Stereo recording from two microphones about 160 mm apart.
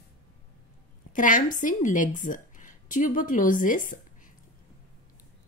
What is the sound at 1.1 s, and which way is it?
A woman's voice, 55° left (ahead or behind).